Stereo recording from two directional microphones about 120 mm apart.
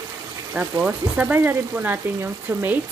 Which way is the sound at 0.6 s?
15° right (ahead or behind).